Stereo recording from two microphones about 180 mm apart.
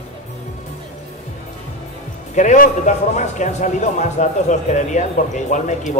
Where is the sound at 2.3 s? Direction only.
45° left (ahead or behind).